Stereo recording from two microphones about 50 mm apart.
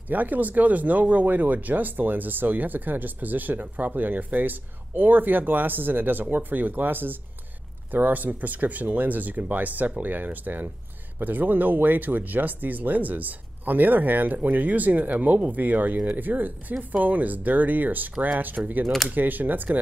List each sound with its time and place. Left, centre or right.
0.1 s speech: right